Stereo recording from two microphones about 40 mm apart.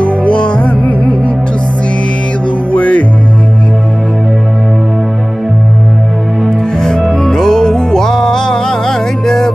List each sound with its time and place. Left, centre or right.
0.0 s music: left
2.7 s music: left
6.8 s music: centre